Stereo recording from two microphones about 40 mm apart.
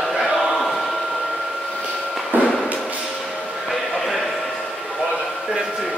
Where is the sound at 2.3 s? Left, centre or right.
Right.